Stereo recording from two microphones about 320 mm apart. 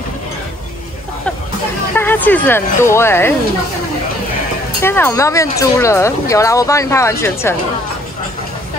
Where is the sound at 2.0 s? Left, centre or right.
Centre.